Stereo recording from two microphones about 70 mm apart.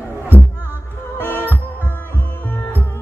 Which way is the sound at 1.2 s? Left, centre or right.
Left.